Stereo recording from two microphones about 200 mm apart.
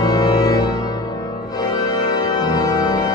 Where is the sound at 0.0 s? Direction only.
20° left (ahead or behind).